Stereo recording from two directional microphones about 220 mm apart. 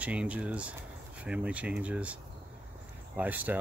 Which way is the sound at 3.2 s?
5° right (ahead or behind).